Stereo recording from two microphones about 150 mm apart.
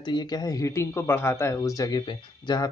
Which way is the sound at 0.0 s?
30° left (ahead or behind).